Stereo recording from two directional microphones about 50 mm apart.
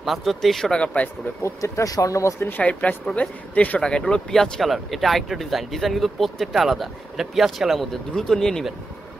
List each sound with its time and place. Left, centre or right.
0.0 s speech: centre
0.7 s speech: left
1.4 s speech: left
2.6 s speech: left
3.8 s speech: centre
4.3 s speech: centre
8.1 s speech: centre